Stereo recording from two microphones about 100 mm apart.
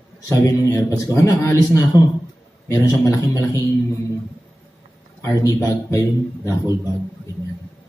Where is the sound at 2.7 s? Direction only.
30° left (ahead or behind).